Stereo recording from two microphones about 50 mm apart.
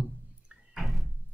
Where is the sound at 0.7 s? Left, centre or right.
Centre.